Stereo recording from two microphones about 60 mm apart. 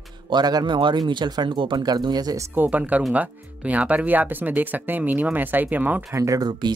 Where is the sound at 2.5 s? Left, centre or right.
Right.